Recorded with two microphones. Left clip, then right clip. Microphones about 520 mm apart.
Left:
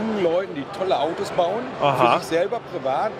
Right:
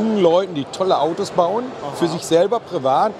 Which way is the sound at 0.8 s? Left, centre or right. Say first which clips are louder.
Right 4 dB; right.